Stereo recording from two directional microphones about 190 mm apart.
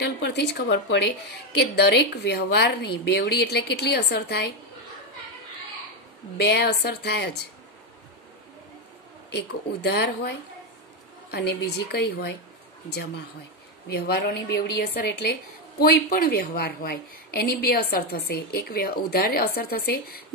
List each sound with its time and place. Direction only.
0.0 s a woman's voice: 60° left (ahead or behind)
6.3 s a woman's voice: 65° left (ahead or behind)
9.3 s a woman's voice: 60° left (ahead or behind)
11.3 s a woman's voice: 60° left (ahead or behind)
13.8 s a woman's voice: 55° left (ahead or behind)